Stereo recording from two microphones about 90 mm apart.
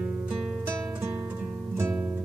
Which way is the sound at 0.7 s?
25° right (ahead or behind).